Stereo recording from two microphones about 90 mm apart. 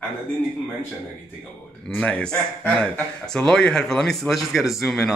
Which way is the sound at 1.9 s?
10° left (ahead or behind).